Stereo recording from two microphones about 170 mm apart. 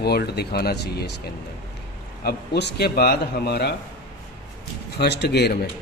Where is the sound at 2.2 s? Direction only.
75° left (ahead or behind).